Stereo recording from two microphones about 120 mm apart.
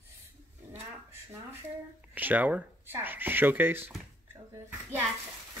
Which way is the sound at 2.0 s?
15° right (ahead or behind).